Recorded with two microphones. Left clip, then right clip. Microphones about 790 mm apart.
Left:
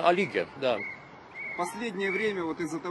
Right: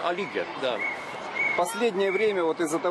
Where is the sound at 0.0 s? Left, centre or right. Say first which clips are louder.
Left 3 dB; left.